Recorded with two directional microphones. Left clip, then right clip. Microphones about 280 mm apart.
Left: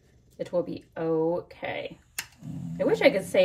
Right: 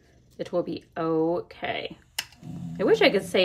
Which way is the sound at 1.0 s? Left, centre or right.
Centre.